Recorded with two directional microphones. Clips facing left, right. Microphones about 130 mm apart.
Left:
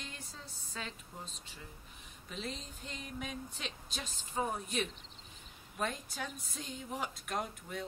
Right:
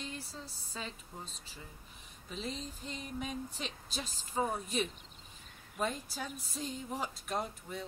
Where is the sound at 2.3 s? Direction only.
Centre (ahead or behind).